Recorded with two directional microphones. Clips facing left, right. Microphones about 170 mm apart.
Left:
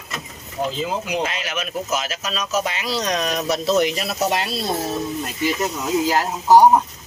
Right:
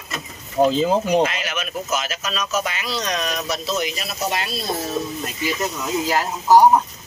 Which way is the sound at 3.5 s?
60° left (ahead or behind).